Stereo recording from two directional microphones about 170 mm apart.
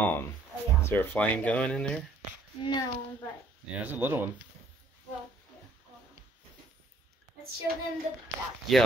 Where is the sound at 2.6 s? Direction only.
25° left (ahead or behind).